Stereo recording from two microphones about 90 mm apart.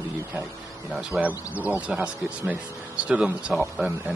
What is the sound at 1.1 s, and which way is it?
Speech, 15° right (ahead or behind).